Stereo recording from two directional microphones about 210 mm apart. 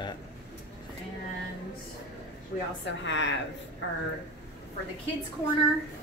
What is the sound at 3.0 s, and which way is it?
Speech, 60° left (ahead or behind).